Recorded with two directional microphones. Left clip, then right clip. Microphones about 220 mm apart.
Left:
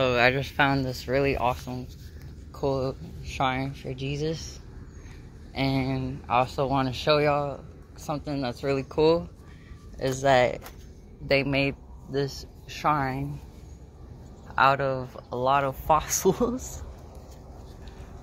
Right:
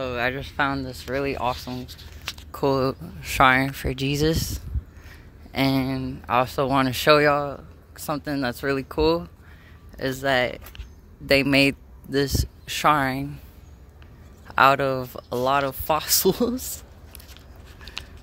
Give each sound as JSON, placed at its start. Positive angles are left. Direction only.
{"t": 0.0, "sound": "speech", "side_deg": 0}
{"t": 1.5, "sound": "speech", "side_deg": -25}
{"t": 2.5, "sound": "speech", "side_deg": -60}
{"t": 5.5, "sound": "speech", "side_deg": -50}
{"t": 11.2, "sound": "speech", "side_deg": -50}
{"t": 14.5, "sound": "speech", "side_deg": -55}